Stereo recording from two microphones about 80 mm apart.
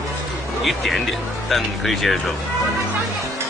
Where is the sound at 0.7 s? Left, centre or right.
Centre.